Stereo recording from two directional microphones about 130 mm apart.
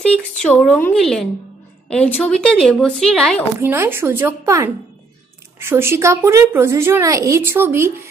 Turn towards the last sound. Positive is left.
turn(degrees=-20)  # may be behind; listen again after turning